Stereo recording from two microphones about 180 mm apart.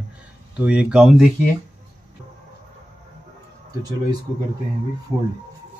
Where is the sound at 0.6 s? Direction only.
5° right (ahead or behind).